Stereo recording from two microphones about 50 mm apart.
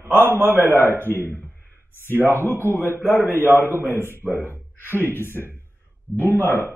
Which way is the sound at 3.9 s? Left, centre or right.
Left.